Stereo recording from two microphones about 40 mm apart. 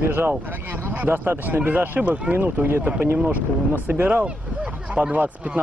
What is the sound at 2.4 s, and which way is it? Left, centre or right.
Speech, right.